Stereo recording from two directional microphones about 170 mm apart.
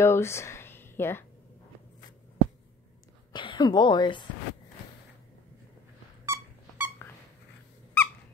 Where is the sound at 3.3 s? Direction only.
30° left (ahead or behind).